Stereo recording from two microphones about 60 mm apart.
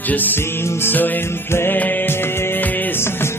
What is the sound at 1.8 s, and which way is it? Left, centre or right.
Music, left.